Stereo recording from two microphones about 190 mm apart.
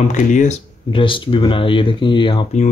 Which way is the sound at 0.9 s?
25° left (ahead or behind).